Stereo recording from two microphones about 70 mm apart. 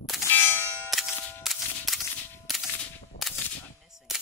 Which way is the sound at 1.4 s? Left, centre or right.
Centre.